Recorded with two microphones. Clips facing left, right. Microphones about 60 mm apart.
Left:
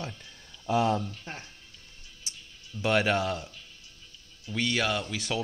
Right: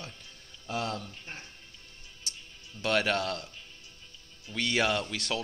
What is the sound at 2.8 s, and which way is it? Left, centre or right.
Speech, centre.